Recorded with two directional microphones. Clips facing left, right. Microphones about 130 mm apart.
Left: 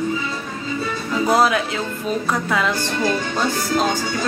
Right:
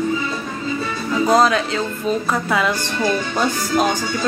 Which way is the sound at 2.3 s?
5° right (ahead or behind).